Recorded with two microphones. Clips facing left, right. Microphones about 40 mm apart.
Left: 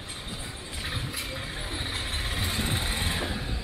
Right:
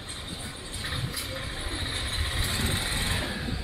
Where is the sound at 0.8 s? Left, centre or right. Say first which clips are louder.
Even; centre.